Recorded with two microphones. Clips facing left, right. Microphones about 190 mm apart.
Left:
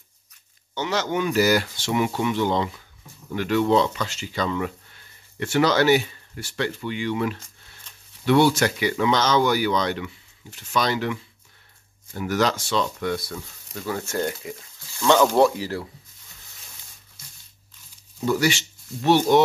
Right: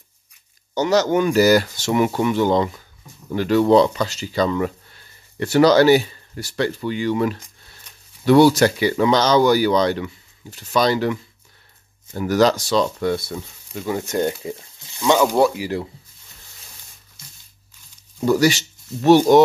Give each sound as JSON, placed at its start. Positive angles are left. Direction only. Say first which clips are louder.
{"t": 0.7, "sound": "speech", "louder": "right 8 dB", "side_deg": -40}
{"t": 15.6, "sound": "speech", "louder": "right 4 dB", "side_deg": -20}
{"t": 18.2, "sound": "speech", "louder": "right 5 dB", "side_deg": -40}